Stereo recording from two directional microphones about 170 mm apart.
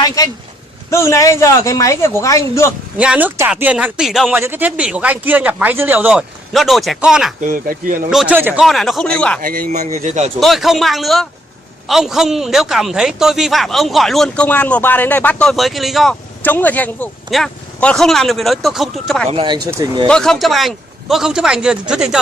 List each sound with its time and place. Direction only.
0.0 s speech: 20° left (ahead or behind)
3.0 s speech: 10° right (ahead or behind)
7.4 s speech: 55° right (ahead or behind)
8.1 s a man's voice: 5° right (ahead or behind)
8.6 s a man's voice: centre (ahead or behind)
9.4 s speech: 55° right (ahead or behind)
10.4 s a man's voice: centre (ahead or behind)
16.4 s a man's voice: 10° left (ahead or behind)
19.3 s speech: 25° right (ahead or behind)
20.1 s a man's voice: 5° left (ahead or behind)